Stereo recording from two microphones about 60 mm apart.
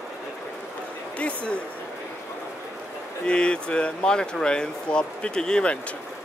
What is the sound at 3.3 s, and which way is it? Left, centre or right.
Speech, centre.